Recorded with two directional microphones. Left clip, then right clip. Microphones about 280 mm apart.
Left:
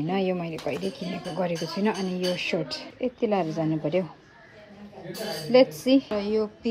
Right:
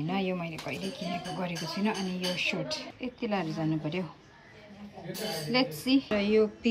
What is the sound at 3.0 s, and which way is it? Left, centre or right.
A woman's voice, right.